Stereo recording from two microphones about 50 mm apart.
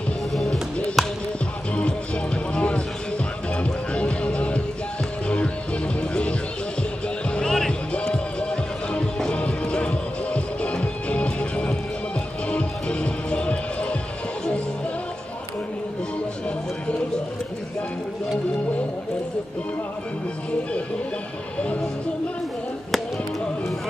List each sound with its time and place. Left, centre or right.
0.3 s music: centre
1.8 s music: centre
5.9 s music: left
7.3 s music: centre